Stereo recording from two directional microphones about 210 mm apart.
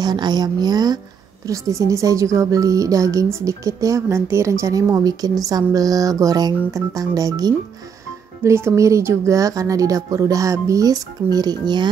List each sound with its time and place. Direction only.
0.0 s speech: 20° right (ahead or behind)